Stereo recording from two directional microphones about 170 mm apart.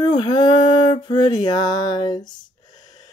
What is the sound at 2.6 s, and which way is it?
Gasp, 25° left (ahead or behind).